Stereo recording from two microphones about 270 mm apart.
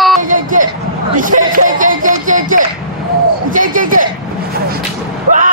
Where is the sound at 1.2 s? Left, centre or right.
Right.